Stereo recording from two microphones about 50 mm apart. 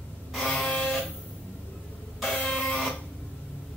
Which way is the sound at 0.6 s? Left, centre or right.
Left.